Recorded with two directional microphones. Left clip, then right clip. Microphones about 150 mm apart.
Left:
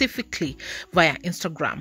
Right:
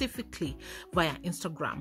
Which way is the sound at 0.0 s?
35° left (ahead or behind).